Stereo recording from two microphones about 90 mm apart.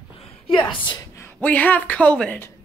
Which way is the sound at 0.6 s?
70° left (ahead or behind).